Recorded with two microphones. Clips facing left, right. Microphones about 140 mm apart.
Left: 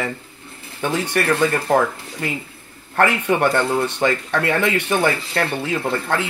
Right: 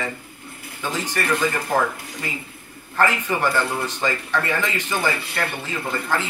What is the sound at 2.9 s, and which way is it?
A man's voice, 60° left (ahead or behind).